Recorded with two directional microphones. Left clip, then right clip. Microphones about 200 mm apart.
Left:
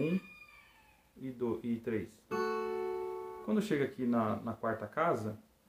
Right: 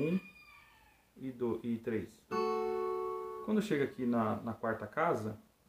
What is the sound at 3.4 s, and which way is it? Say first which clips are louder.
Speech: left 1 dB; 5° left (ahead or behind).